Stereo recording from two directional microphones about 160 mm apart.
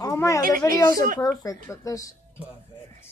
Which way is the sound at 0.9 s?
60° right (ahead or behind).